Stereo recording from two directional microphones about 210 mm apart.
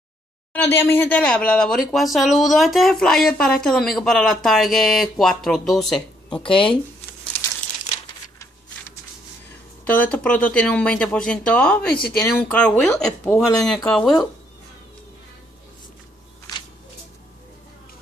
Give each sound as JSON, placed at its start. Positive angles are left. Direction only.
{"t": 0.5, "sound": "a woman's voice", "side_deg": 10}
{"t": 6.4, "sound": "speech", "side_deg": 25}
{"t": 9.8, "sound": "a woman's voice", "side_deg": 5}